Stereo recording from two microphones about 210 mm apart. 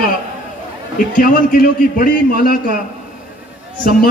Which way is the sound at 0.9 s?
40° left (ahead or behind).